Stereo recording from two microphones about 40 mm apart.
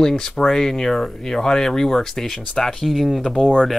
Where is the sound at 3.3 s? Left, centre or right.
Left.